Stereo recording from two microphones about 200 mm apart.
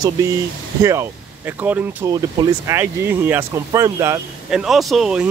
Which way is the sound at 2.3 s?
20° right (ahead or behind).